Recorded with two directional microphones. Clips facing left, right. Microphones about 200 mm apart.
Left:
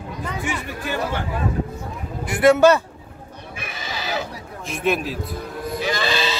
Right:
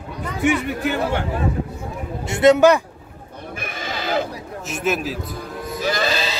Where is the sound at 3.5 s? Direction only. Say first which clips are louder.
Right 3 dB; 55° right (ahead or behind).